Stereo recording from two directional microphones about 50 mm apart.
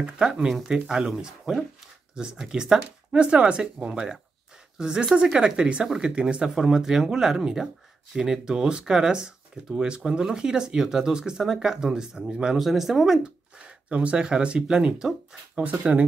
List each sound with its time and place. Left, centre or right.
0.0 s speech: centre
12.5 s speech: centre
13.6 s speech: right
15.8 s speech: right